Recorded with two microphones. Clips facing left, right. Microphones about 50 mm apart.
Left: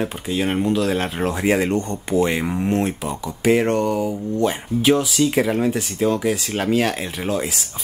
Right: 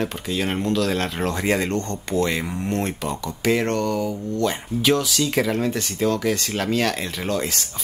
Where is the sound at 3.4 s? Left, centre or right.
Centre.